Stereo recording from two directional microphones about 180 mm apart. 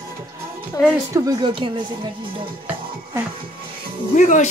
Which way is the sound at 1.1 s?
20° right (ahead or behind).